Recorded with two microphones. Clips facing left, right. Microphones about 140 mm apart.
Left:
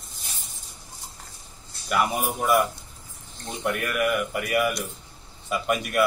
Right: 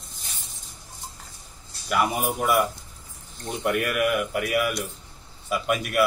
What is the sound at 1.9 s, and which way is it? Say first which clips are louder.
Speech: right 1 dB; centre (ahead or behind).